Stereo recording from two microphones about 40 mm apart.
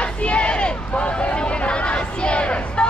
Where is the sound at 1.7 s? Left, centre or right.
Left.